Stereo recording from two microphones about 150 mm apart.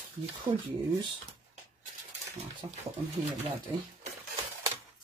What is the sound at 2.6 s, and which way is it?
Speech, 25° right (ahead or behind).